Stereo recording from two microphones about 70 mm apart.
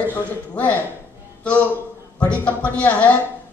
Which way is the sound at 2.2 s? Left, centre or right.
Left.